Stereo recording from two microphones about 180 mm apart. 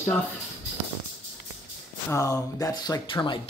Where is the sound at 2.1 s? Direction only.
15° left (ahead or behind).